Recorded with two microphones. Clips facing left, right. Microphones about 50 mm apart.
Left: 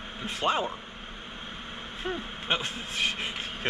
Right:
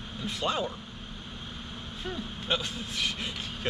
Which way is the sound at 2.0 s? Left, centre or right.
Left.